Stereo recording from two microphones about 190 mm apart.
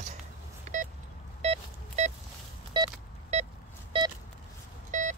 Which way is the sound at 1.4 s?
35° right (ahead or behind).